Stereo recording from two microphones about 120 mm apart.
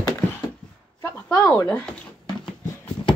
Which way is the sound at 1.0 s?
15° left (ahead or behind).